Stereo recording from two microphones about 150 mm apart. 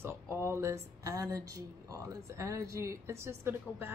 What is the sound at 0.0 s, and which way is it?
Speech, 15° right (ahead or behind).